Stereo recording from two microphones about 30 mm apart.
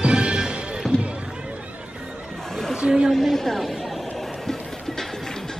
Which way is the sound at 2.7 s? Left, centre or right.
Right.